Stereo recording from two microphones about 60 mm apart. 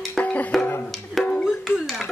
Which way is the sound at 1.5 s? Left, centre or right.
Centre.